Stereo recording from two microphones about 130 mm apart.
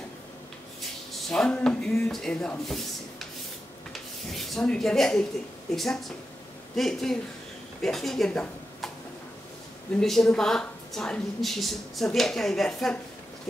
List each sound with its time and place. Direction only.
1.1 s speech: 5° left (ahead or behind)
2.6 s a sound: centre (ahead or behind)
3.9 s a woman's voice: centre (ahead or behind)
9.9 s a woman's voice: centre (ahead or behind)